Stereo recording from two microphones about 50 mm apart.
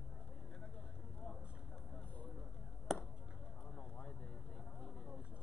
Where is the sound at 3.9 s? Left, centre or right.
Left.